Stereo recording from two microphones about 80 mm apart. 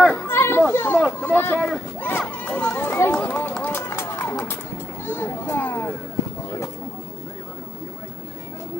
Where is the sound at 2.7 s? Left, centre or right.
Left.